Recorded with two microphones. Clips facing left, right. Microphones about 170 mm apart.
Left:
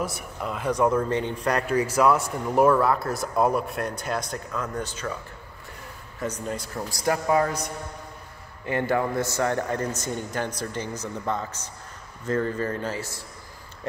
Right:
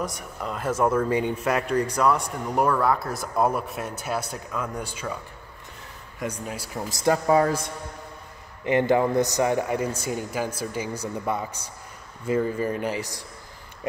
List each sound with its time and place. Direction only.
0.0 s speech: 5° left (ahead or behind)
6.1 s speech: 10° right (ahead or behind)
6.9 s a man's voice: 25° right (ahead or behind)
8.6 s speech: 20° right (ahead or behind)